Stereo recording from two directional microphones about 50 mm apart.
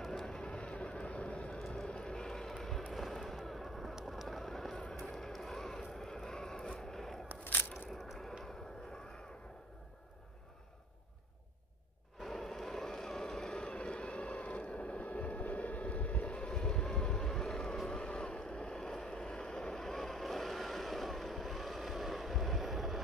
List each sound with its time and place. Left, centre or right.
0.0 s vehicle: centre
0.4 s vehicle: left
1.6 s vehicle: centre
2.6 s fireworks: centre
4.1 s a sound: centre
12.2 s vehicle: centre; by 15.8 s left
15.9 s boat: left
16.4 s vehicle: centre